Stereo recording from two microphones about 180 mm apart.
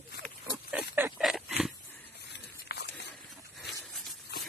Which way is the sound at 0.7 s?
10° right (ahead or behind).